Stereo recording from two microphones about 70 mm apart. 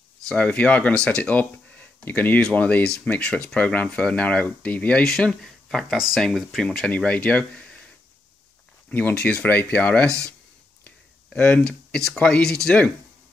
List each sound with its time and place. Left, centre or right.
0.3 s speech: centre
5.0 s speech: centre
7.0 s speech: centre
9.1 s speech: centre
11.3 s speech: centre